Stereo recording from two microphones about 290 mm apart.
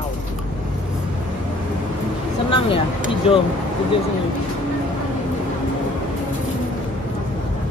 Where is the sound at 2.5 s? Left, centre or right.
Centre.